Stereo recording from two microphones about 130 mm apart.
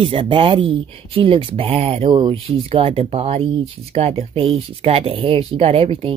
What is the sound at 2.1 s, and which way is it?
Speech, 40° right (ahead or behind).